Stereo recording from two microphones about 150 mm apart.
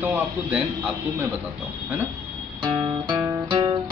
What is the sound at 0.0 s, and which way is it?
Speech, 10° right (ahead or behind).